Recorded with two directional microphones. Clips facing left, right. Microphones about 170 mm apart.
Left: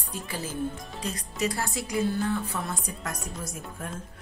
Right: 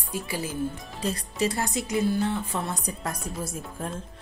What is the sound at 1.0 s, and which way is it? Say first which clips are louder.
Speech: right 3 dB; 30° right (ahead or behind).